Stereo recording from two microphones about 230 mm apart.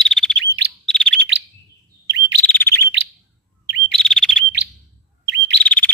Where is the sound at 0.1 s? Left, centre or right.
Centre.